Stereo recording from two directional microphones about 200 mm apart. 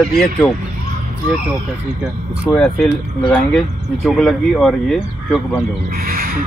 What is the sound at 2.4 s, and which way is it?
Speech, 5° left (ahead or behind).